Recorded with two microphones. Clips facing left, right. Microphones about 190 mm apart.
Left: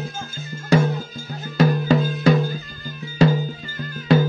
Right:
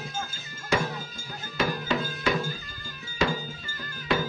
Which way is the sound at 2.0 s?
35° left (ahead or behind).